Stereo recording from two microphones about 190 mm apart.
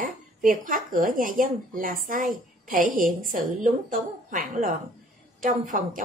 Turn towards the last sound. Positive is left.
turn(degrees=-45)  # may be behind; listen again after turning